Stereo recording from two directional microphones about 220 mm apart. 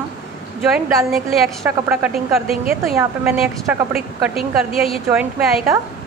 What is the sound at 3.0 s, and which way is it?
Speech, 5° right (ahead or behind).